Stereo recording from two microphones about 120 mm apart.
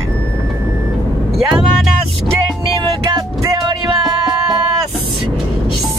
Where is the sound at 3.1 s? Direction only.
35° right (ahead or behind).